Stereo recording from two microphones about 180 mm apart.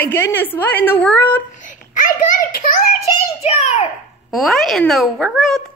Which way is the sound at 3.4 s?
40° left (ahead or behind).